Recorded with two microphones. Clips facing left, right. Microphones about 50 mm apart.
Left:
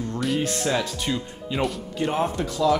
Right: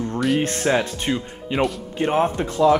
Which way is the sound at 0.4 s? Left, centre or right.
Right.